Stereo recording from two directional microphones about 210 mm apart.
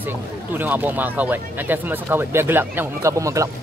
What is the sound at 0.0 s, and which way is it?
Speech, 10° right (ahead or behind).